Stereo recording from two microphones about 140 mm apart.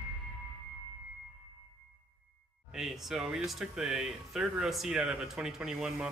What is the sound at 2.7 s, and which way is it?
Speech, centre (ahead or behind).